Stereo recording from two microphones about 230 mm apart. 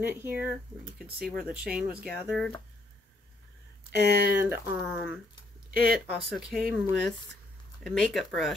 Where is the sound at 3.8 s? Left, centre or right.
Right.